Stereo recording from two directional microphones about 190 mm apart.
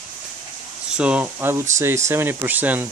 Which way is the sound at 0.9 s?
5° right (ahead or behind).